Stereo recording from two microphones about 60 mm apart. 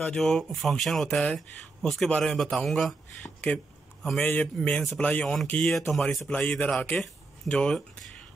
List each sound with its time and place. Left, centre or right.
0.0 s a man's voice: centre
3.4 s a sound: centre
4.2 s speech: left
4.6 s a man's voice: centre
6.3 s a man's voice: centre
6.6 s speech: left
7.4 s a man's voice: centre